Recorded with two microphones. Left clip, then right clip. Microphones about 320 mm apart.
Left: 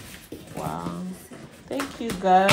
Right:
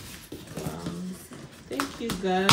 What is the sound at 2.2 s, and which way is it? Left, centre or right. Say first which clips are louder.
Speech: left 9 dB; centre.